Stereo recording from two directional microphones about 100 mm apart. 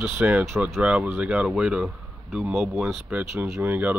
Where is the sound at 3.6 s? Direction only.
20° right (ahead or behind).